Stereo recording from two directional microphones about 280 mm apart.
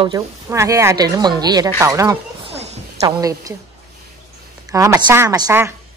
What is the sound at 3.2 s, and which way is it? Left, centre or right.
Speech, centre.